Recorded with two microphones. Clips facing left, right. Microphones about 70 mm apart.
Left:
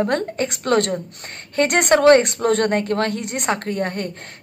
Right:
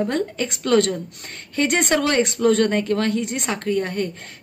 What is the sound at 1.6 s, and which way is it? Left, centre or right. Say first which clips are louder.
Speech: left 3 dB; left.